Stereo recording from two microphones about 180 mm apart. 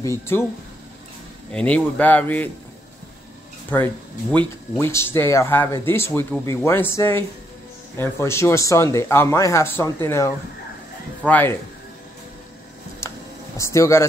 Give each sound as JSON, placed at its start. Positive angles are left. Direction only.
{"t": 0.0, "sound": "speech", "side_deg": 15}
{"t": 1.5, "sound": "speech", "side_deg": 5}
{"t": 3.7, "sound": "speech", "side_deg": 10}
{"t": 13.0, "sound": "a sound", "side_deg": 15}
{"t": 13.6, "sound": "speech", "side_deg": 15}